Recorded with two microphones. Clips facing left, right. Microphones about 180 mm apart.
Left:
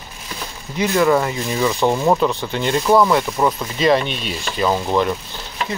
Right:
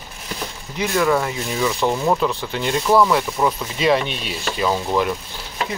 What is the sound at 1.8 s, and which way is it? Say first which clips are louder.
Speech: left 3 dB; 20° left (ahead or behind).